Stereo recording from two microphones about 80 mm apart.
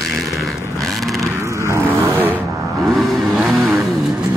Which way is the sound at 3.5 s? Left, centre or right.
Centre.